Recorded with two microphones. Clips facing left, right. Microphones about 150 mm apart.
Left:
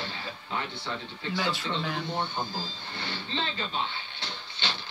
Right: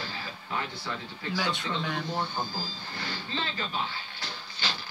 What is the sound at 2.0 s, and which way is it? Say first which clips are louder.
Speech: even; 25° left (ahead or behind).